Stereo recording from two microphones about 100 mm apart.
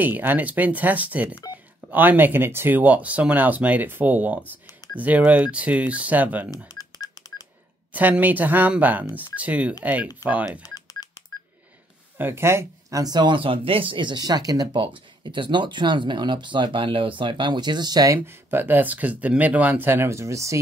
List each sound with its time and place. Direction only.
0.0 s speech: 20° right (ahead or behind)
6.8 s music: 40° left (ahead or behind)
7.9 s speech: 15° right (ahead or behind)
10.6 s telephone dialing: 35° left (ahead or behind)
12.2 s speech: 25° right (ahead or behind)
13.0 s speech: 45° right (ahead or behind)
14.8 s speech: 55° right (ahead or behind); by 18.2 s 40° right (ahead or behind)
18.2 s speech: 25° right (ahead or behind)